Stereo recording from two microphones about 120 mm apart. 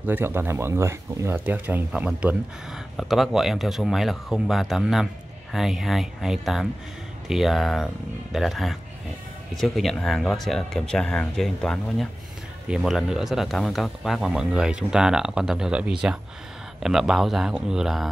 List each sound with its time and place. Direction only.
0.0 s speech: 15° right (ahead or behind)